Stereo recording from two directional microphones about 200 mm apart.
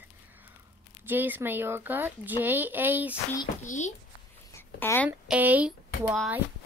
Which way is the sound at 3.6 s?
35° left (ahead or behind).